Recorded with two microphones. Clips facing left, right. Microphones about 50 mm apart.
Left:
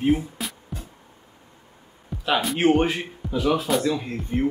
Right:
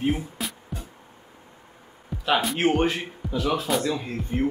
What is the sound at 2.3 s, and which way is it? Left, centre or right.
Speech, centre.